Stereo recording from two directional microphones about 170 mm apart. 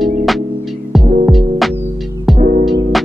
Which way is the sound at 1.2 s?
Centre (ahead or behind).